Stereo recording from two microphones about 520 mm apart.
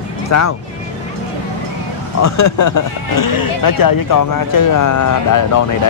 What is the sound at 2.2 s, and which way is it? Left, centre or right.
Speech, left.